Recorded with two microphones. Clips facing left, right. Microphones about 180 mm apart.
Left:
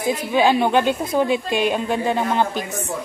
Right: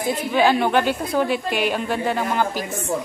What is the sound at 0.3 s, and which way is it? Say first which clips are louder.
A woman's voice: left 1 dB; 15° left (ahead or behind).